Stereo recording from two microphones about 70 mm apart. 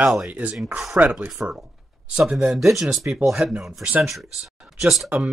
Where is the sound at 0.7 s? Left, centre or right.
Centre.